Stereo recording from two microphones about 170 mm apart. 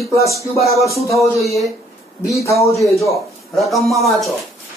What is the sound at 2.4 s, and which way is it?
Speech, 15° left (ahead or behind).